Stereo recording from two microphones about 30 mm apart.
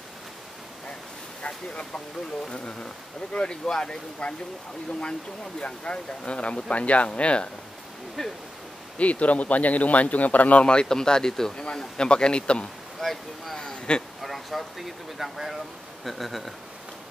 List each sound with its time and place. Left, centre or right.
2.5 s speech: left
4.2 s speech: left
8.2 s speech: centre
8.9 s speech: left
10.6 s speech: left
11.5 s speech: left
13.0 s speech: centre
13.9 s speech: left
14.2 s a sound: centre
15.1 s speech: centre
16.0 s speech: centre